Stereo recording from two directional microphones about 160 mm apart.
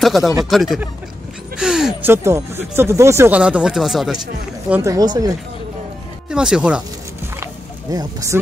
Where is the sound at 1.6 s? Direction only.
5° right (ahead or behind).